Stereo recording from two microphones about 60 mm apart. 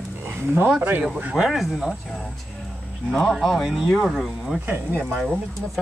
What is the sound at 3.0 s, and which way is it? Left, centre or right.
Speech, centre.